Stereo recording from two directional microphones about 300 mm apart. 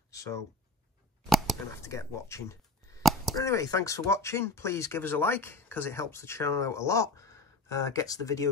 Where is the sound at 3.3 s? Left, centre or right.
Centre.